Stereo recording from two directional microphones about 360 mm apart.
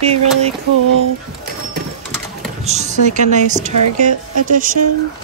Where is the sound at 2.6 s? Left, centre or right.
Centre.